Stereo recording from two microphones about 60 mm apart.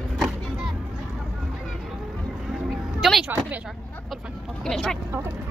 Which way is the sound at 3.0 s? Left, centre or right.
Centre.